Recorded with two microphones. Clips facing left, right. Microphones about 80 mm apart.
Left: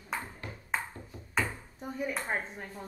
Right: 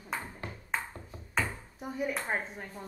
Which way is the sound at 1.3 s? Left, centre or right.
Centre.